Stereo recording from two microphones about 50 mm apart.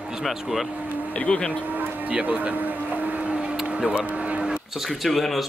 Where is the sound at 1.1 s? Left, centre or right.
Left.